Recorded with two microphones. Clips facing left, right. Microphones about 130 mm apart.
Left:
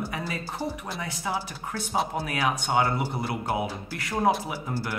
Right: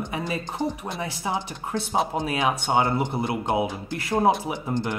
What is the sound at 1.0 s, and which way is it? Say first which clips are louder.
Speech: right 3 dB; 25° right (ahead or behind).